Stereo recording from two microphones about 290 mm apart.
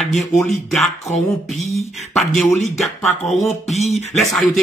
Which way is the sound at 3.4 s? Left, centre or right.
Left.